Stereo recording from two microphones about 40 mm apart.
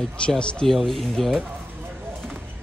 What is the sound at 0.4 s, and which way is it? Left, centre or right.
Speech, left.